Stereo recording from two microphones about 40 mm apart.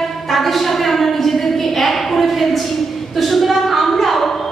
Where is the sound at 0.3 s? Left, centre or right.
Centre.